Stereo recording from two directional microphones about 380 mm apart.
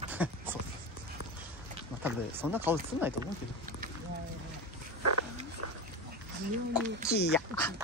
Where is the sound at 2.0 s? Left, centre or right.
Centre.